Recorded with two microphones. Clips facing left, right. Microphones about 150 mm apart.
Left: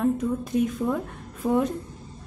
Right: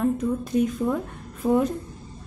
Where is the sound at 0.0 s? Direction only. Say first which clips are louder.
Even; centre (ahead or behind).